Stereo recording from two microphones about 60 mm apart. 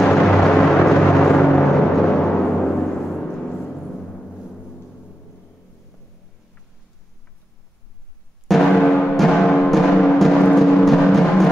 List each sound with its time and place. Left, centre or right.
0.0 s a sound: centre
8.7 s timpani: centre
9.1 s music: centre